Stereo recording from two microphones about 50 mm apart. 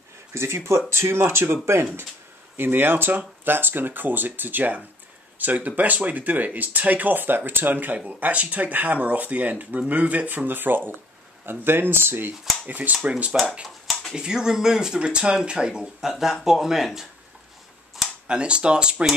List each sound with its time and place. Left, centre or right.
0.3 s speech: right
8.2 s speech: right
12.6 s speech: right; by 17.0 s centre
18.2 s speech: centre